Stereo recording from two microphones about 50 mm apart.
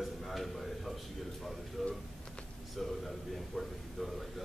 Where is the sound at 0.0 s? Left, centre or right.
Centre.